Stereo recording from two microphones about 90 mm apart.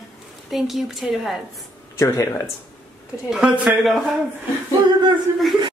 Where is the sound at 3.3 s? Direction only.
10° right (ahead or behind).